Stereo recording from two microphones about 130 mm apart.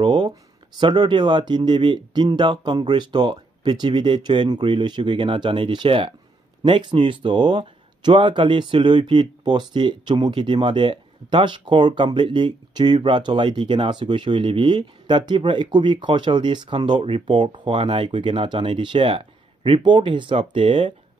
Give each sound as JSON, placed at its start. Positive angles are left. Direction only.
{"t": 0.0, "sound": "speech", "side_deg": -35}